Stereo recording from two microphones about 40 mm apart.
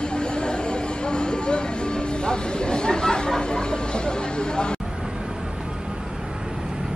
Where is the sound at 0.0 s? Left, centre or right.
Left.